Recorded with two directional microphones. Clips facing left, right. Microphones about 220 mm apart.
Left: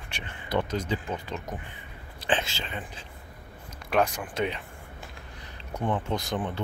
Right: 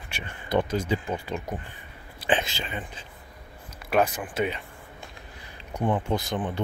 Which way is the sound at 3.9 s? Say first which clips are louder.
Right 2 dB; 5° right (ahead or behind).